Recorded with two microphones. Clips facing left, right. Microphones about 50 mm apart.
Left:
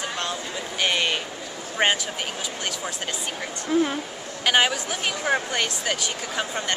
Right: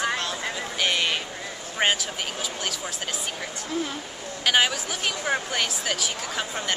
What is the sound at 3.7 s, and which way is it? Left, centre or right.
Speech, centre.